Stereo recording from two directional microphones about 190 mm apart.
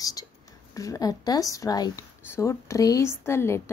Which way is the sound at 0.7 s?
20° left (ahead or behind).